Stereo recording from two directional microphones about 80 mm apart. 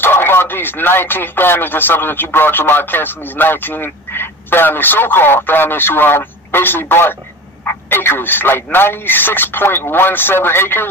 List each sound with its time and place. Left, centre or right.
0.0 s speech: left